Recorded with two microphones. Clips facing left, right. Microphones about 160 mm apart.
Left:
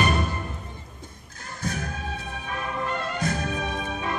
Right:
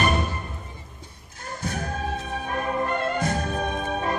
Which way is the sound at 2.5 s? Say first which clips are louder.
Right 4 dB; 45° right (ahead or behind).